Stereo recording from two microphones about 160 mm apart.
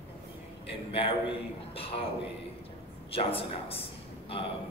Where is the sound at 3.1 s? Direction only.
35° left (ahead or behind).